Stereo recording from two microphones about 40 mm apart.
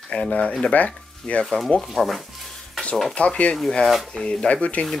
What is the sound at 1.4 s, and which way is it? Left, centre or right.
Speech, centre.